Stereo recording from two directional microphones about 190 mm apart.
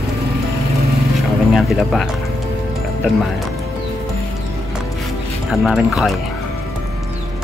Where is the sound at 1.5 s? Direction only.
Centre (ahead or behind).